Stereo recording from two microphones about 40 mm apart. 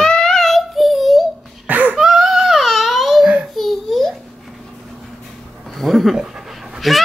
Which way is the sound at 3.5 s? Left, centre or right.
Centre.